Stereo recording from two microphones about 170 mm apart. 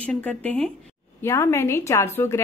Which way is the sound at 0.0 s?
10° left (ahead or behind).